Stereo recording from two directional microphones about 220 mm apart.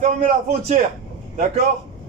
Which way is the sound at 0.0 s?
30° right (ahead or behind).